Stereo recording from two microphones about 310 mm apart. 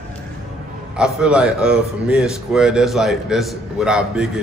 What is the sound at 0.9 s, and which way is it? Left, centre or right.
A man's voice, centre.